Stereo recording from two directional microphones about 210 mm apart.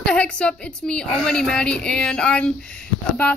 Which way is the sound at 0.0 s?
5° left (ahead or behind).